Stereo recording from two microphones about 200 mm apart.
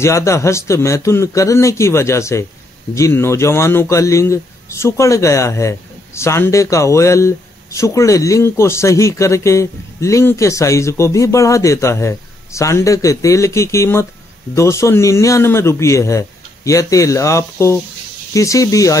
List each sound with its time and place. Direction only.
0.0 s a man's voice: 15° left (ahead or behind)